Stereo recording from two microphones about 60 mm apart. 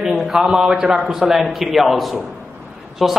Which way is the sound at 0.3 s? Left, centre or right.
Centre.